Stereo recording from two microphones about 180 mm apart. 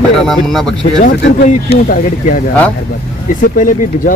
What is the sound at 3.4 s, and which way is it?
Speech, 50° left (ahead or behind).